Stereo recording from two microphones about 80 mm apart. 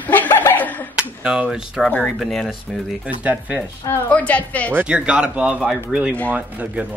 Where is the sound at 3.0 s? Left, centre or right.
Centre.